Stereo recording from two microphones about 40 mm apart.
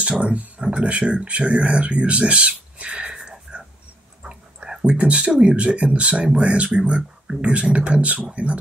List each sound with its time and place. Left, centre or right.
0.2 s speech: right
3.1 s a sound: centre
5.2 s speech: right